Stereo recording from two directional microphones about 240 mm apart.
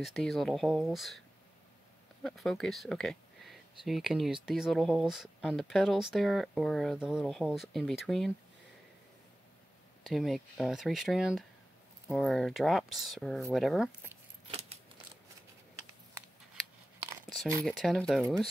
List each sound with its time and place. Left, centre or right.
0.0 s speech: centre
2.2 s speech: centre
10.0 s speech: centre
14.5 s keys jangling: right
17.6 s speech: centre